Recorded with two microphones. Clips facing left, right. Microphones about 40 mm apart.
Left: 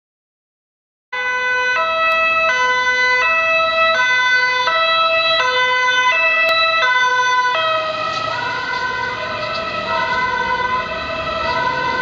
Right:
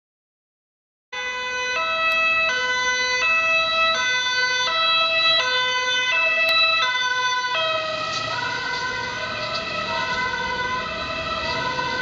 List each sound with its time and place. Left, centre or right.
1.5 s ambulance: centre
6.4 s emergency vehicle: centre
9.9 s emergency vehicle: centre